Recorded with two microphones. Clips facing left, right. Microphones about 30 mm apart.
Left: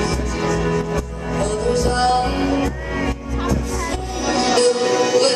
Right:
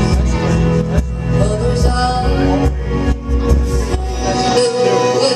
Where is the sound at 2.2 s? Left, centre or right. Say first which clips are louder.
Right 3 dB; centre.